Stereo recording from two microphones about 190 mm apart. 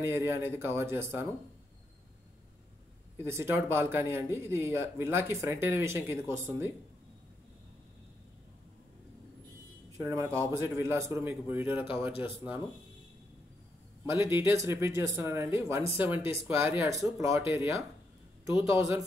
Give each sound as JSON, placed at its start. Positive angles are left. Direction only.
{"t": 0.0, "sound": "speech", "side_deg": -15}
{"t": 3.2, "sound": "speech", "side_deg": -15}
{"t": 9.9, "sound": "speech", "side_deg": -15}
{"t": 14.0, "sound": "speech", "side_deg": -15}